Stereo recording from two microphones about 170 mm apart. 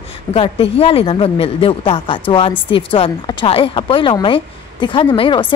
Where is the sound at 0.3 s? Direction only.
35° left (ahead or behind).